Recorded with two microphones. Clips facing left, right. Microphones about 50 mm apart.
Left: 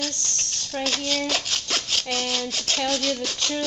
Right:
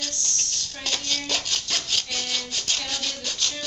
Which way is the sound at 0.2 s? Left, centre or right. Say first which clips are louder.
Even; left.